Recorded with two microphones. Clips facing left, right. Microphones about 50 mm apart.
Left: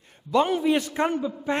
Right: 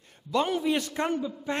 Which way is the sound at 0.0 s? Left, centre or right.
Centre.